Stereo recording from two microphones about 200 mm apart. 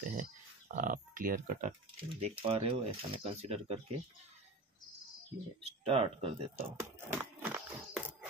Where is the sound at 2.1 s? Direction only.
30° right (ahead or behind).